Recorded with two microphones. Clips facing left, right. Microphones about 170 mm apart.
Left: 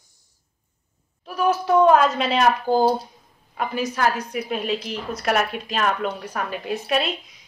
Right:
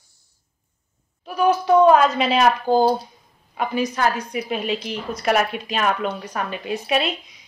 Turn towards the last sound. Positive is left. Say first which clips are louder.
# right 1 dB
turn(degrees=0)  # may be behind; listen again after turning